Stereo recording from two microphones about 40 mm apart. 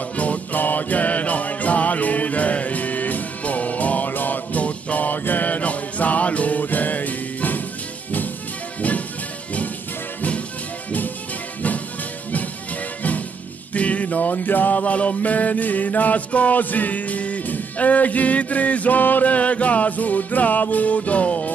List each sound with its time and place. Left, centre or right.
0.2 s music: left
13.7 s music: left